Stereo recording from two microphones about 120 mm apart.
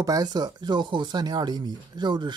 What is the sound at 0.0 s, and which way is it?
Speech, 30° right (ahead or behind).